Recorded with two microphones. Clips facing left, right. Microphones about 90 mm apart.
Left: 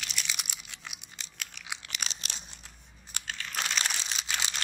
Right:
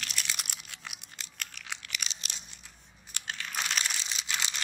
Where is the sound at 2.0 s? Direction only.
40° left (ahead or behind).